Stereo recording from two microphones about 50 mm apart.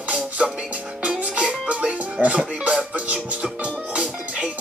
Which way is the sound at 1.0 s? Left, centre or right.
Right.